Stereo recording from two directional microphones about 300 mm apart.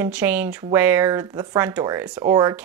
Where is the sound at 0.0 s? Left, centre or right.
Centre.